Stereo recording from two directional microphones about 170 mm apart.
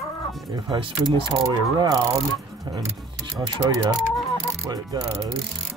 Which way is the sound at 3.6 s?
20° right (ahead or behind).